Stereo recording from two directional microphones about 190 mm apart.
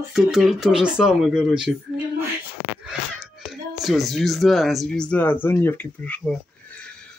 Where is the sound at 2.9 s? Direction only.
5° right (ahead or behind).